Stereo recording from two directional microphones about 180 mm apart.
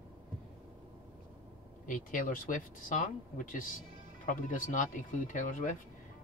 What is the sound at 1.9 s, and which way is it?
Speech, 50° left (ahead or behind).